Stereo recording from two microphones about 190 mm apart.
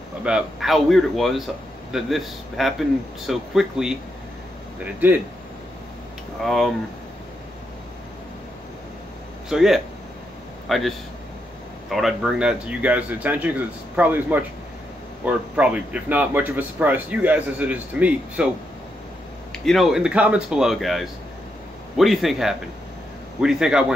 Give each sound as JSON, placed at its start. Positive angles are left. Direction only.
{"t": 0.2, "sound": "speech", "side_deg": -5}
{"t": 6.4, "sound": "speech", "side_deg": 0}
{"t": 9.5, "sound": "speech", "side_deg": 0}
{"t": 19.6, "sound": "speech", "side_deg": 0}